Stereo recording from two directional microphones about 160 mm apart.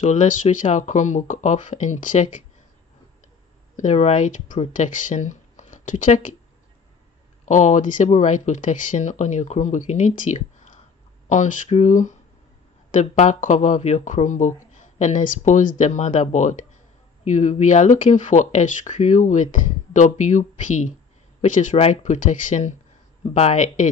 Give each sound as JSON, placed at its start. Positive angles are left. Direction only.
{"t": 0.0, "sound": "speech", "side_deg": 50}
{"t": 3.7, "sound": "speech", "side_deg": 50}
{"t": 7.4, "sound": "speech", "side_deg": 50}